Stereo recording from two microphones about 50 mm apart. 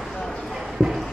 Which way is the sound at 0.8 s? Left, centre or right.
Centre.